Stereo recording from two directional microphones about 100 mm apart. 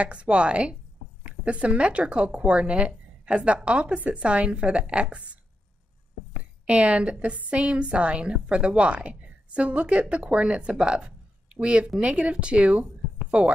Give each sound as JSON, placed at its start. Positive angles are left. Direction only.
{"t": 0.0, "sound": "a woman's voice", "side_deg": -10}
{"t": 6.6, "sound": "a woman's voice", "side_deg": -10}